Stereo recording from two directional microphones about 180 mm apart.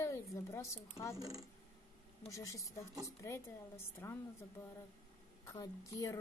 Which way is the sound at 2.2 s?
20° left (ahead or behind).